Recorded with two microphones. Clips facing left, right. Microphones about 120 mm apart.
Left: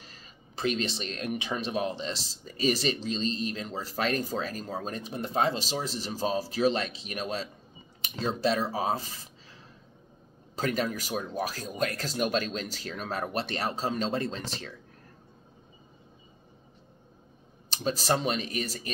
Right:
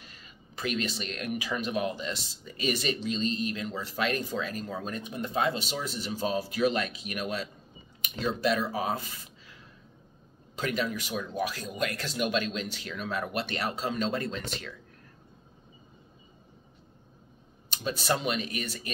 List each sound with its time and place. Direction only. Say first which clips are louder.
0.0 s speech: even; 35° left (ahead or behind)
17.6 s speech: left 2 dB; 40° left (ahead or behind)